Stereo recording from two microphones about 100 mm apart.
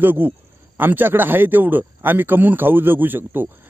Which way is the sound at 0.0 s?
20° right (ahead or behind).